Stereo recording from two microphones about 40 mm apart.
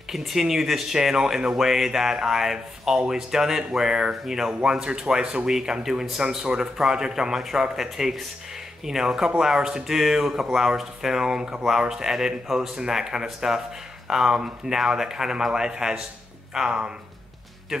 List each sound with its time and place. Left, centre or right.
0.1 s speech: centre; by 16.9 s right